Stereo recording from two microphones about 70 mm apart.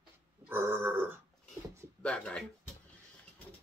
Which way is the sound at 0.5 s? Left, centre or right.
Right.